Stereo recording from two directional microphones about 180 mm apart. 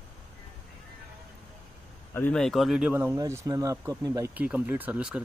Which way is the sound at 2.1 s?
10° left (ahead or behind).